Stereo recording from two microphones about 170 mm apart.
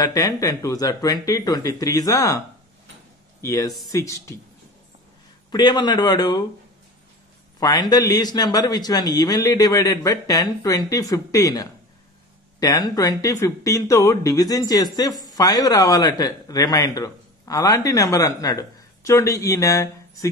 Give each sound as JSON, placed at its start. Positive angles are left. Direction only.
{"t": 0.0, "sound": "speech", "side_deg": 20}
{"t": 5.5, "sound": "speech", "side_deg": 25}
{"t": 7.6, "sound": "speech", "side_deg": 25}